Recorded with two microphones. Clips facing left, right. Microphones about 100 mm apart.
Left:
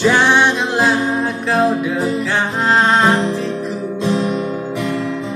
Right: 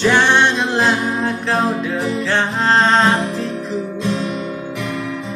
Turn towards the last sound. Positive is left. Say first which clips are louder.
# left 3 dB
turn(degrees=20)  # may be behind; listen again after turning